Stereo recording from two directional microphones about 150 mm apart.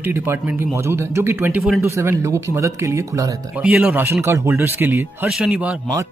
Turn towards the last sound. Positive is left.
turn(degrees=-5)  # may be behind; listen again after turning